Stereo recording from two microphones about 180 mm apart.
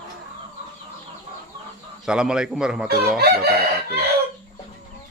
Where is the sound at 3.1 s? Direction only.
60° right (ahead or behind).